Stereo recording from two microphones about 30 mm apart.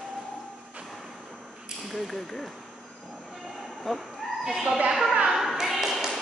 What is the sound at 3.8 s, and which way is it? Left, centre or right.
Fowl, centre.